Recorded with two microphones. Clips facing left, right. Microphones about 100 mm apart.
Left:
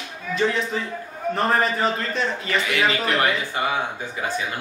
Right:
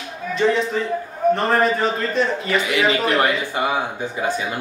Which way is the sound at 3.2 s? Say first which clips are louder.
Right 3 dB; 20° right (ahead or behind).